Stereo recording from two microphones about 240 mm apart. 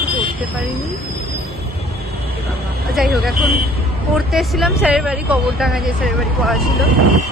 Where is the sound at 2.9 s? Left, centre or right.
Centre.